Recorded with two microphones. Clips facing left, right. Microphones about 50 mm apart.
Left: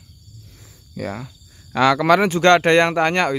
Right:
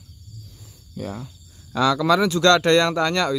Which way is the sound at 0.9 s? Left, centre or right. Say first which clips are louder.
Left 3 dB; left.